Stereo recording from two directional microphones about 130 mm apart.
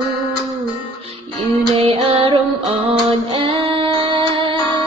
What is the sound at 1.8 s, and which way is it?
Music, 50° right (ahead or behind).